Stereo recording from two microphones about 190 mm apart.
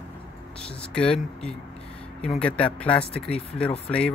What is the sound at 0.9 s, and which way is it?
A man's voice, 5° left (ahead or behind).